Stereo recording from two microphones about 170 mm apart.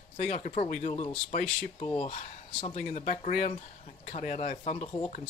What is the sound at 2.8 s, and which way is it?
Speech, 50° left (ahead or behind).